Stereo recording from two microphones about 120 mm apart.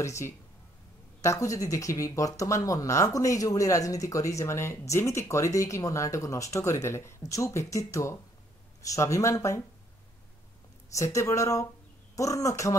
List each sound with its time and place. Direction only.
0.0 s speech: 25° left (ahead or behind)
10.9 s speech: 25° left (ahead or behind)